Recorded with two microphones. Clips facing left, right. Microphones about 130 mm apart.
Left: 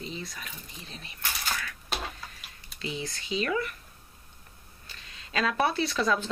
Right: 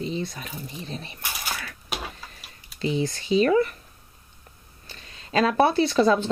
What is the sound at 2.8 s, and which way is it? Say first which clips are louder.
Speech: right 10 dB; 35° right (ahead or behind).